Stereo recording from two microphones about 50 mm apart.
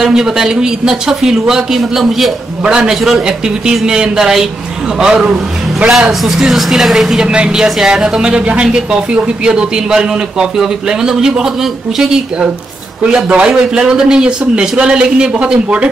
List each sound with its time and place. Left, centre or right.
0.0 s a man's voice: centre
2.6 s a man's voice: centre
7.2 s a man's voice: centre
13.3 s a man's voice: centre